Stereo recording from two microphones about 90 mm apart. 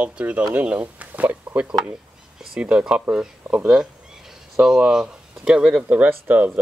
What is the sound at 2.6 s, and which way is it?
Speech, 10° right (ahead or behind).